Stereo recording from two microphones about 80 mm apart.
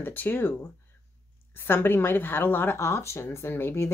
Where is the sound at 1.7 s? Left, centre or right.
Left.